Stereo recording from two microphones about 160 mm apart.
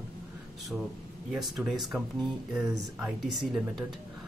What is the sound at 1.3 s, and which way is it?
Speech, centre (ahead or behind).